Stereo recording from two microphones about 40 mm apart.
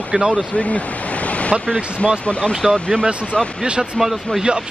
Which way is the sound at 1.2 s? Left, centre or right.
Left.